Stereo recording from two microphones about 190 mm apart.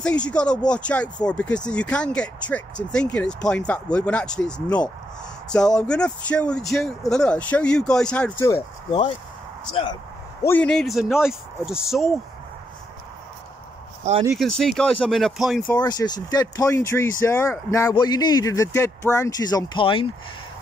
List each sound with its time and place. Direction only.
0.0 s speech: 5° left (ahead or behind)
8.5 s speech: 30° left (ahead or behind)
10.4 s speech: 10° left (ahead or behind)
14.3 s speech: centre (ahead or behind)
15.8 s speech: 20° left (ahead or behind)